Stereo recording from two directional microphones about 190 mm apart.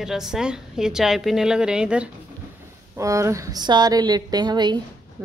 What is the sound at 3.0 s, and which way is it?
A woman's voice, 15° right (ahead or behind).